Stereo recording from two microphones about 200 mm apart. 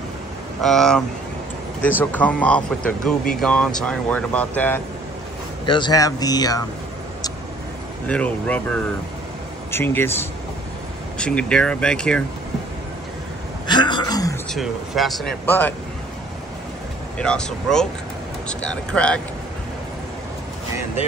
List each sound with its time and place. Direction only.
0.6 s speech: centre (ahead or behind)
5.7 s speech: 20° left (ahead or behind)
8.1 s speech: 5° left (ahead or behind)
13.7 s a sound: 20° left (ahead or behind)
14.5 s speech: centre (ahead or behind)
17.2 s speech: 5° left (ahead or behind)